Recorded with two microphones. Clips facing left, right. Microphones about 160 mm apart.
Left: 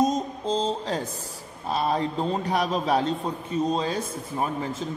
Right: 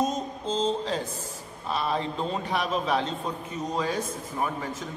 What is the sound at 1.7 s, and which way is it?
A man's voice, 40° left (ahead or behind).